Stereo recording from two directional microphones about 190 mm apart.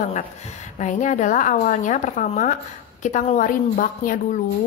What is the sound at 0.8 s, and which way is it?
A woman's voice, 40° left (ahead or behind).